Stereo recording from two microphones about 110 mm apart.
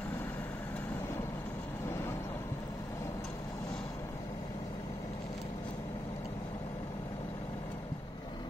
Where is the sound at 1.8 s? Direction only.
25° left (ahead or behind).